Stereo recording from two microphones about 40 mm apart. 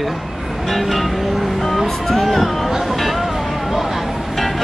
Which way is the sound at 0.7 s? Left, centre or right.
Centre.